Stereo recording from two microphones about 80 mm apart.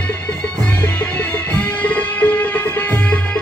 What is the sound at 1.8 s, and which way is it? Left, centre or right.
Music, centre.